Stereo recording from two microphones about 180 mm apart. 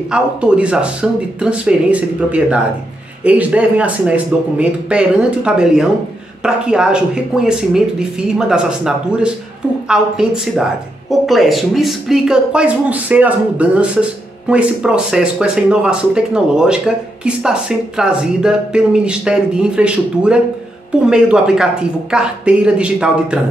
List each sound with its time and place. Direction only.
0.1 s speech: 5° right (ahead or behind)